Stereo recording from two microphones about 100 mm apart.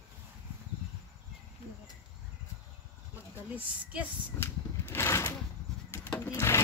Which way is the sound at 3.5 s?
15° right (ahead or behind).